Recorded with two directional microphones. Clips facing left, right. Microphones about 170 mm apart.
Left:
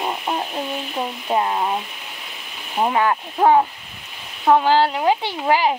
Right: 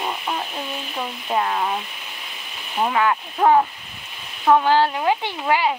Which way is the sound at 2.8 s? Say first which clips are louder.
Left 1 dB; 25° left (ahead or behind).